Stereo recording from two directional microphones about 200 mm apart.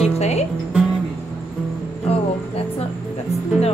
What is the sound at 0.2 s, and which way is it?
Music, 35° left (ahead or behind).